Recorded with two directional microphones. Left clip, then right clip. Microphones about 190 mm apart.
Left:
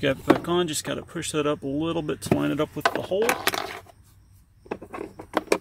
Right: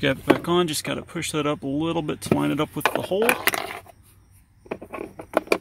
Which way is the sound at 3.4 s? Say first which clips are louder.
Right 2 dB; 5° left (ahead or behind).